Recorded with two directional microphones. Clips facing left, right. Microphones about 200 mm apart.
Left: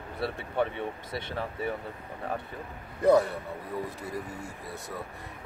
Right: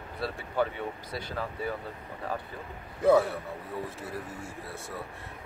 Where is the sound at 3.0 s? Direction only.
5° right (ahead or behind).